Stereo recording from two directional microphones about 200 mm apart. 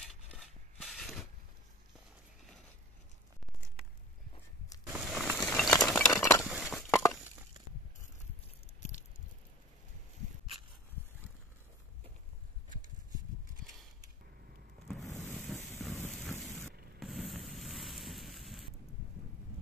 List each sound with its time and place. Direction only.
0.4 s mechanisms: centre (ahead or behind)
4.9 s a sound: 5° right (ahead or behind)
6.1 s crushing: 15° left (ahead or behind)
6.4 s crushing: centre (ahead or behind)
15.0 s ocean: 10° left (ahead or behind)
17.0 s a sound: centre (ahead or behind)